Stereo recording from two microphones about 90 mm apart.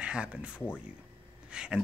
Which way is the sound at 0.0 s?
15° right (ahead or behind).